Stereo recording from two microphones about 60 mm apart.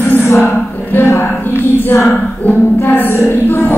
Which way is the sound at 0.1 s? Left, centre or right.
Left.